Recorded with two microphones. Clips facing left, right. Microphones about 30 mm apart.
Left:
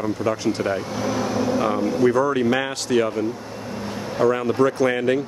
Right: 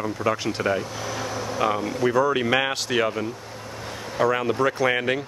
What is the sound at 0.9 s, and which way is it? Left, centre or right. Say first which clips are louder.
Vehicle: left 6 dB; centre.